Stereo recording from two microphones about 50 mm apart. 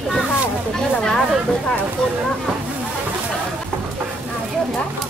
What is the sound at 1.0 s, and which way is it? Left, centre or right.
Speech, centre.